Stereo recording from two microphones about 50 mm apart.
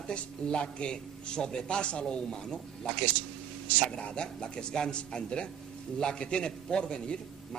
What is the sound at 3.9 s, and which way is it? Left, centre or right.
A man's voice, centre.